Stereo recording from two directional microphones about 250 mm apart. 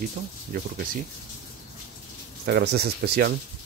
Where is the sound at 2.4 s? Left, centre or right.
Right.